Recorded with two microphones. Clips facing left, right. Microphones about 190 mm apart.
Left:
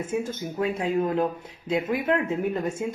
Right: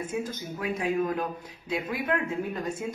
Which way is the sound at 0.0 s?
25° left (ahead or behind).